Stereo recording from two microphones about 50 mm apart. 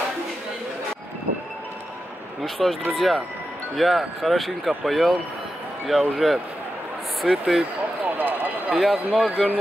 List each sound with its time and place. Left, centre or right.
2.4 s speech: centre
8.2 s a sound: right
8.7 s speech: centre